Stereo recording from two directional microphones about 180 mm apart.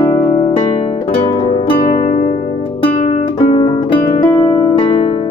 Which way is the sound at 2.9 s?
35° left (ahead or behind).